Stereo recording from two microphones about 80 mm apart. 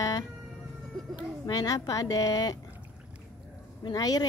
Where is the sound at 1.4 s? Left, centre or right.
Left.